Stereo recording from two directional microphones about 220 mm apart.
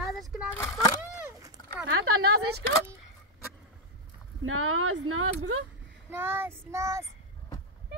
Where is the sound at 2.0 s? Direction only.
75° right (ahead or behind).